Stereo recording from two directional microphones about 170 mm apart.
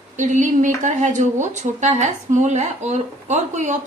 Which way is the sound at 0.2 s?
45° right (ahead or behind).